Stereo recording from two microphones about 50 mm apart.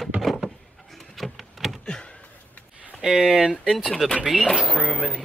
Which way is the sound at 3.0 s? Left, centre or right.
Centre.